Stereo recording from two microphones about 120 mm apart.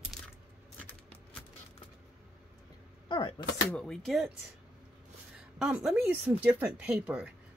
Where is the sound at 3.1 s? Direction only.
40° left (ahead or behind).